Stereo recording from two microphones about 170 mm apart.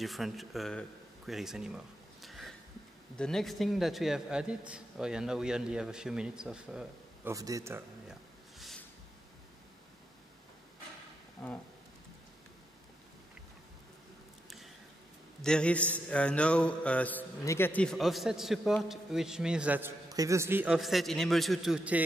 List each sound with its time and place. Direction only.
0.0 s a man's voice: centre (ahead or behind)
7.2 s speech: 20° right (ahead or behind)
8.1 s a sound: centre (ahead or behind)
15.4 s a man's voice: 5° left (ahead or behind)
20.1 s a man's voice: 20° right (ahead or behind)